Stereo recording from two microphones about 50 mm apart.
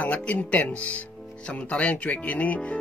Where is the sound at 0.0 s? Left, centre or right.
Left.